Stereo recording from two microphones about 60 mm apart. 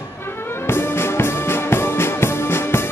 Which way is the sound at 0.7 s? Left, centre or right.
Left.